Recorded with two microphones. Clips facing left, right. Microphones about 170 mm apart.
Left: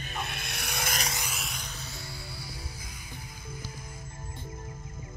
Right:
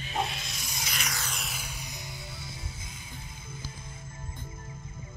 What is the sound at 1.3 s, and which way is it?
Music, centre (ahead or behind).